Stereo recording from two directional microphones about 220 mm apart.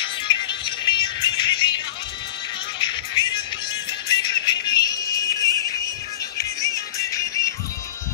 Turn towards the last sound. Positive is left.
turn(degrees=15)  # may be behind; listen again after turning